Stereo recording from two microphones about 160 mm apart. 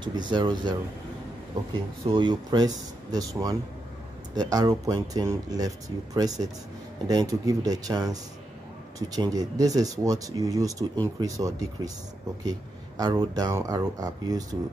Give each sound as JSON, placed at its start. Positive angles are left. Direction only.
{"t": 0.0, "sound": "speech", "side_deg": -30}
{"t": 2.0, "sound": "speech", "side_deg": -30}